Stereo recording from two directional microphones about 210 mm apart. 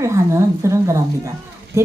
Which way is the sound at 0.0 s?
15° right (ahead or behind).